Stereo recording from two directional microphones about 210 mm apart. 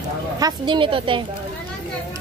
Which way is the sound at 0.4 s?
20° right (ahead or behind).